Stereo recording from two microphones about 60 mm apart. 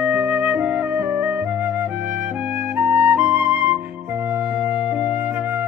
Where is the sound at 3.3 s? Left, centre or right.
Right.